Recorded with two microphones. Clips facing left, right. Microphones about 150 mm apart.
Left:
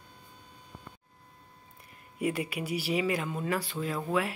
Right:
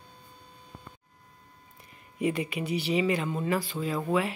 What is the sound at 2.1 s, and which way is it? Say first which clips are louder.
A woman's voice: right 2 dB; 5° left (ahead or behind).